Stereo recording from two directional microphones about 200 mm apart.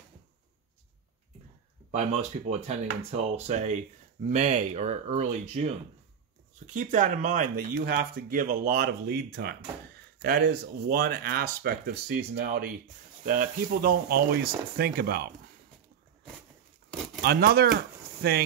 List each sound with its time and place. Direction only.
1.9 s speech: 35° right (ahead or behind); by 15.2 s 50° right (ahead or behind)
16.9 s tearing: centre (ahead or behind)
17.2 s speech: 50° right (ahead or behind)